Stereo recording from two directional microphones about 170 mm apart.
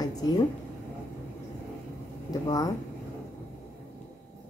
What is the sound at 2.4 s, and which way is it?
Speech, 20° left (ahead or behind).